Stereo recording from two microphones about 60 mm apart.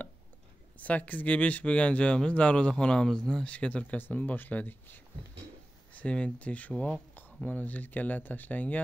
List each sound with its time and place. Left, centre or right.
0.7 s speech: left
5.9 s speech: centre